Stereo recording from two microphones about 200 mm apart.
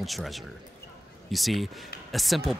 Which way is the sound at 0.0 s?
Centre (ahead or behind).